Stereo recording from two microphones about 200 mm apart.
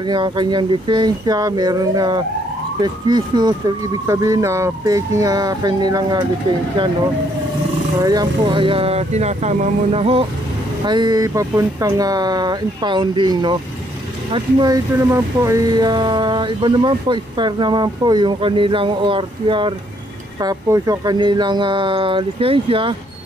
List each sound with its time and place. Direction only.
0.0 s speech: 20° right (ahead or behind)
8.0 s speech: 20° right (ahead or behind)